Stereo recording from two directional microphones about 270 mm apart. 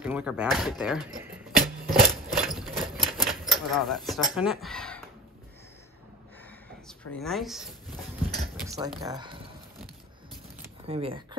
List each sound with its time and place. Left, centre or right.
0.0 s speech: centre
1.9 s typewriter: centre
3.3 s speech: centre
6.9 s speech: centre
8.6 s dishes: centre
9.1 s speech: centre
10.9 s speech: right